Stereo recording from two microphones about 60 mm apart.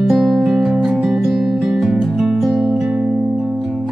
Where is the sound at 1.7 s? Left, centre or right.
Centre.